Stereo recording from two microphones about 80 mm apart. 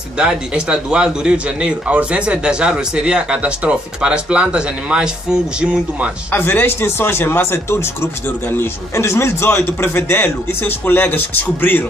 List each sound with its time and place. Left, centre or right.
0.2 s a man's voice: centre
6.3 s speech: left